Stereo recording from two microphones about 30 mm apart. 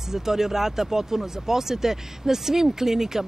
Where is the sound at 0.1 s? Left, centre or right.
Centre.